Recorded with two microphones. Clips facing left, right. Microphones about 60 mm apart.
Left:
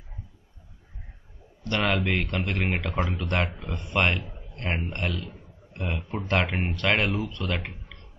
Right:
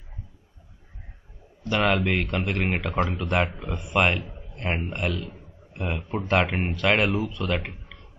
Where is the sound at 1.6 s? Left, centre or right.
Centre.